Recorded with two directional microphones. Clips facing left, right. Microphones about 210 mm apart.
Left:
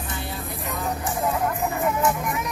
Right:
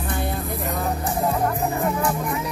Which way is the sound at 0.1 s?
55° right (ahead or behind).